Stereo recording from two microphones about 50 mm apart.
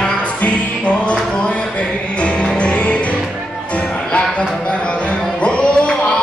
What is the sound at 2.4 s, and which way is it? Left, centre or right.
Music, left.